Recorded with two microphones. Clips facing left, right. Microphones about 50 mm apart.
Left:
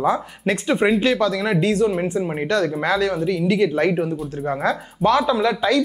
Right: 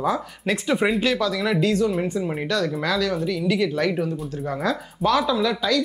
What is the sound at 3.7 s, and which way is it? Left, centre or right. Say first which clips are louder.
Speech: left 3 dB; left.